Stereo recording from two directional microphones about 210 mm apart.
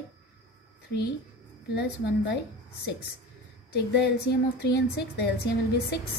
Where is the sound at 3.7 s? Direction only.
50° left (ahead or behind).